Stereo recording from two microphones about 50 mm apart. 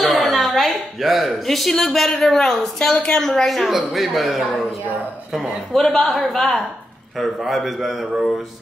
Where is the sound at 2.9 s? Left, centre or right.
Left.